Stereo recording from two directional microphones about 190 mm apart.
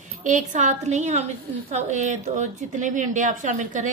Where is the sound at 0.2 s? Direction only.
40° right (ahead or behind).